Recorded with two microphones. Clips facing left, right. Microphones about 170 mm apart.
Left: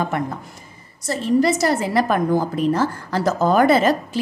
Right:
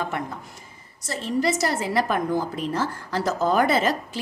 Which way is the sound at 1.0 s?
45° left (ahead or behind).